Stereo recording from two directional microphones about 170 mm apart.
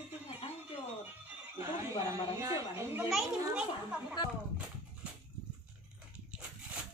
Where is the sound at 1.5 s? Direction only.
15° right (ahead or behind).